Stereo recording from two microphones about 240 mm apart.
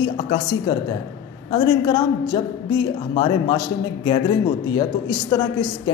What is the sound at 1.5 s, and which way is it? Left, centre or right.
A woman's voice, centre.